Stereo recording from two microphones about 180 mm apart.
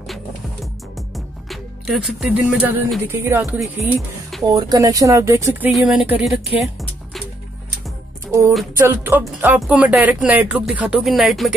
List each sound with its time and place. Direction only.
0.9 s music: centre (ahead or behind)
3.0 s speech: 15° right (ahead or behind)
4.6 s speech: 20° right (ahead or behind)
5.7 s speech: centre (ahead or behind)
6.6 s music: centre (ahead or behind)
8.3 s music: 15° right (ahead or behind)
8.7 s speech: 10° right (ahead or behind)